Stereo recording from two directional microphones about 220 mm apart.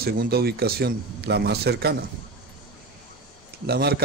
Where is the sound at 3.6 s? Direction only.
45° right (ahead or behind).